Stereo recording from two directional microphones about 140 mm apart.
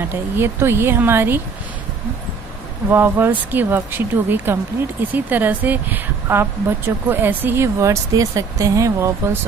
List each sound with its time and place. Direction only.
0.0 s speech: 15° right (ahead or behind)
2.9 s speech: 15° right (ahead or behind)